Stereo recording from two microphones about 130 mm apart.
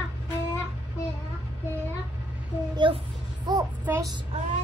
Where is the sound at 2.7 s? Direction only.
40° right (ahead or behind).